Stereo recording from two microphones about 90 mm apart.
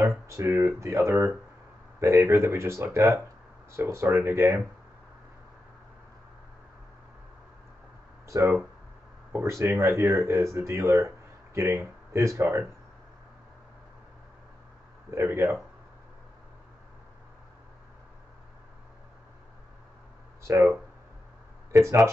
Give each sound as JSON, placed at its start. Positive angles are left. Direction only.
{"t": 0.3, "sound": "speech", "side_deg": -30}
{"t": 8.3, "sound": "speech", "side_deg": -30}
{"t": 15.0, "sound": "speech", "side_deg": -30}
{"t": 20.4, "sound": "speech", "side_deg": -30}
{"t": 21.7, "sound": "speech", "side_deg": -30}